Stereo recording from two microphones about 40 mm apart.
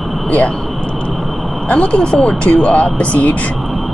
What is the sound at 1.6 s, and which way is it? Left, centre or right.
Speech, left.